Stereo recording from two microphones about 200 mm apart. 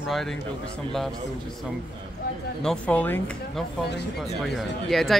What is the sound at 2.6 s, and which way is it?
Speech, 5° left (ahead or behind).